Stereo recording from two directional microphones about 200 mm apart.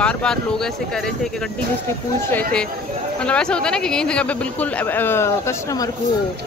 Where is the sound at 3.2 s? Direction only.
5° left (ahead or behind).